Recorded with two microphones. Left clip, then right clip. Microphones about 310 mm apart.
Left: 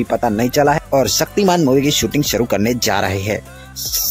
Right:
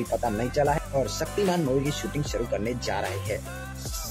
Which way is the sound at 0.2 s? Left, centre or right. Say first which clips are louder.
Left 12 dB; left.